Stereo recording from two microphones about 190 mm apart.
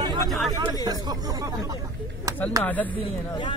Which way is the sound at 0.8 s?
20° right (ahead or behind).